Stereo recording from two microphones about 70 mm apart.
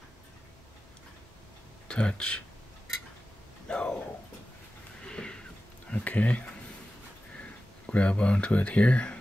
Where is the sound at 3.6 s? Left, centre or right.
Centre.